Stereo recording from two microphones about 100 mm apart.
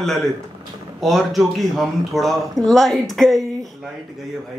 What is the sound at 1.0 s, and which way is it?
Speech, centre (ahead or behind).